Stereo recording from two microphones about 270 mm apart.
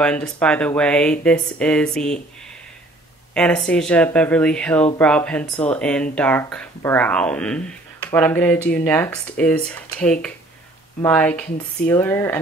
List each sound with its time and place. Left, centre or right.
0.0 s speech: centre
3.3 s speech: centre